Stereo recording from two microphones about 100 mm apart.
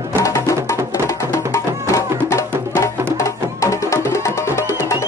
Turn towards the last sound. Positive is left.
turn(degrees=30)  # may be behind; listen again after turning